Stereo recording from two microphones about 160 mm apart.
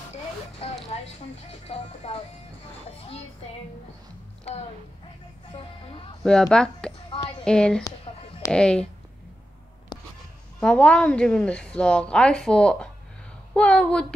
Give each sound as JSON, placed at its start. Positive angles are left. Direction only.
{"t": 1.7, "sound": "speech", "side_deg": 40}
{"t": 5.5, "sound": "speech", "side_deg": 35}
{"t": 6.2, "sound": "a woman's voice", "side_deg": 5}
{"t": 7.1, "sound": "a sound", "side_deg": 35}
{"t": 7.4, "sound": "a woman's voice", "side_deg": 5}
{"t": 10.6, "sound": "a woman's voice", "side_deg": 5}